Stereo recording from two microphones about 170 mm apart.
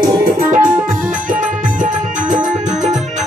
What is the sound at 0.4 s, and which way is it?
Music, 50° right (ahead or behind).